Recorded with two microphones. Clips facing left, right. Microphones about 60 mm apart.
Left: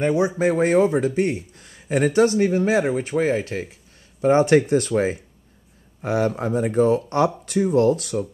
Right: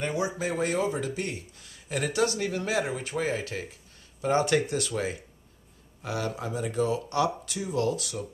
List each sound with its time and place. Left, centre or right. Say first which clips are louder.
0.4 s speech: left 12 dB; left